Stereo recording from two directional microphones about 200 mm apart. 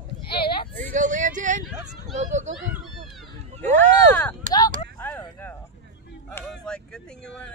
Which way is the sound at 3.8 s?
10° left (ahead or behind).